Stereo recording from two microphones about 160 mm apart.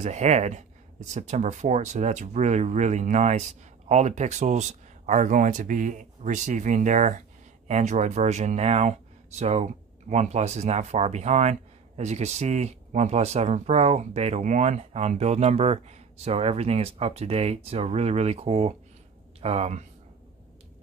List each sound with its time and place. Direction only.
0.0 s speech: 45° right (ahead or behind)